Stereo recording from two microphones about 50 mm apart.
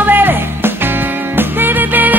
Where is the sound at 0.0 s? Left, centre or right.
Right.